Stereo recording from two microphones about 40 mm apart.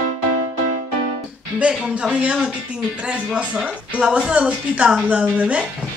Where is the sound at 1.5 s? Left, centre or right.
Right.